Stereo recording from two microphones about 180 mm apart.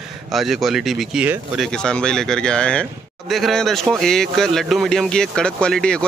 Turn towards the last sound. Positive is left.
turn(degrees=5)  # may be behind; listen again after turning